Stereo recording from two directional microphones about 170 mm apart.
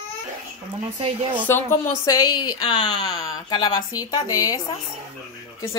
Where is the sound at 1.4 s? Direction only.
15° left (ahead or behind).